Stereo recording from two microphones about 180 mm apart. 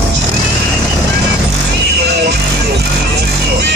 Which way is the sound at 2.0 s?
65° right (ahead or behind).